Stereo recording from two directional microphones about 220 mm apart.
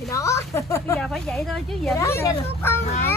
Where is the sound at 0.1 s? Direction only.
15° left (ahead or behind).